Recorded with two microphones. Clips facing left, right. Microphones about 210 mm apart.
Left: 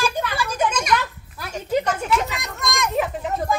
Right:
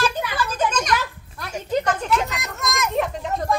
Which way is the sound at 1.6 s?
10° left (ahead or behind).